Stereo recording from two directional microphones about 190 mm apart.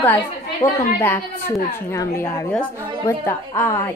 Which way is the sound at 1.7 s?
15° left (ahead or behind).